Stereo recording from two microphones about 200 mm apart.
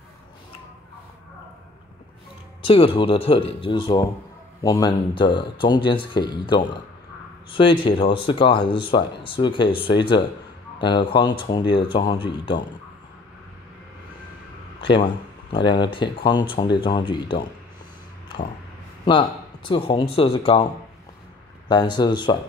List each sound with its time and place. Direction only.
2.6 s speech: 25° left (ahead or behind)
14.8 s a sound: 25° left (ahead or behind)
15.5 s speech: 25° left (ahead or behind)
19.0 s speech: 25° left (ahead or behind)
21.6 s speech: 20° left (ahead or behind)